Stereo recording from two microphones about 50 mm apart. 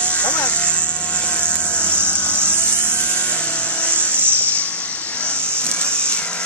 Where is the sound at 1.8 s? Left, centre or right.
Left.